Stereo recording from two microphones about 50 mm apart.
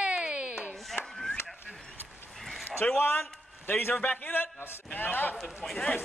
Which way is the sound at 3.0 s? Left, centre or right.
Left.